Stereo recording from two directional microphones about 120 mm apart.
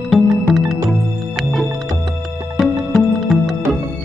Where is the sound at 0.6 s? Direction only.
Centre (ahead or behind).